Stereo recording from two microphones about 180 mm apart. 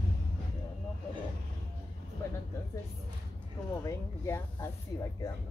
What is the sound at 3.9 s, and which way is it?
Speech, 15° left (ahead or behind).